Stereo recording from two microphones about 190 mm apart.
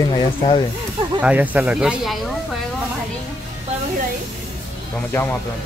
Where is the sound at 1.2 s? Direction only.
10° right (ahead or behind).